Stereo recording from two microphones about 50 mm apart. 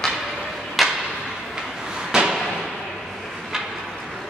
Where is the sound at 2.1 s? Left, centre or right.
Centre.